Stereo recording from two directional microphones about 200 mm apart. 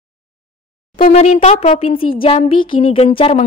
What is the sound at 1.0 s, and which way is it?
A woman's voice, 35° left (ahead or behind).